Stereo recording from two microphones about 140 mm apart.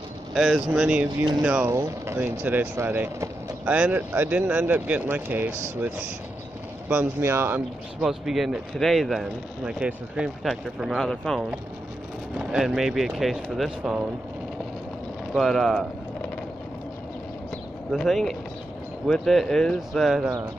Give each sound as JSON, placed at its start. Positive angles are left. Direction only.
{"t": 0.3, "sound": "speech", "side_deg": -5}
{"t": 1.7, "sound": "speech", "side_deg": -20}
{"t": 6.9, "sound": "speech", "side_deg": -15}
{"t": 8.0, "sound": "speech", "side_deg": 0}
{"t": 15.3, "sound": "speech", "side_deg": 0}
{"t": 17.9, "sound": "speech", "side_deg": 0}